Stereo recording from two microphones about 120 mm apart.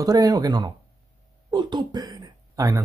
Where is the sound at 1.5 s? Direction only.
40° right (ahead or behind).